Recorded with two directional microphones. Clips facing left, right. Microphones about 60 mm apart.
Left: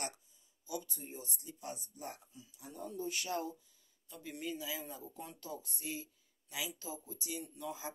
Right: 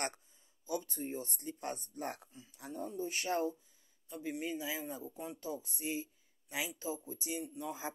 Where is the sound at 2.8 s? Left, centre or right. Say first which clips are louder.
Right 2 dB; right.